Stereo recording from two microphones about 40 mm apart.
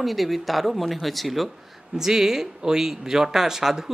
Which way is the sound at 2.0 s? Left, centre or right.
Centre.